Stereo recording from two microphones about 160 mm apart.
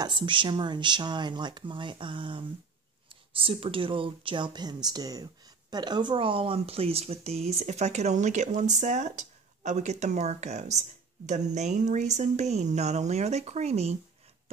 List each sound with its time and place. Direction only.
0.0 s speech: 30° right (ahead or behind)